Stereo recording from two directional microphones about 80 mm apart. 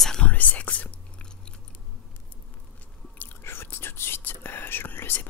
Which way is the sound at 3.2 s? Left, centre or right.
Left.